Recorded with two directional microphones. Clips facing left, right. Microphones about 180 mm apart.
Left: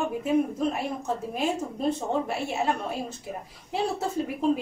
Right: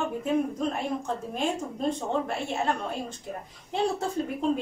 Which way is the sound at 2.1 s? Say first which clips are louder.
Left 1 dB; 5° left (ahead or behind).